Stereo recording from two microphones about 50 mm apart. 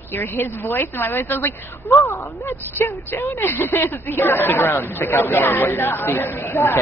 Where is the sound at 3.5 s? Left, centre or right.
Left.